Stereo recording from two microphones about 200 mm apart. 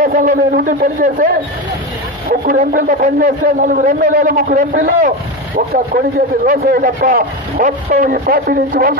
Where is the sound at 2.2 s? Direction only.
45° right (ahead or behind).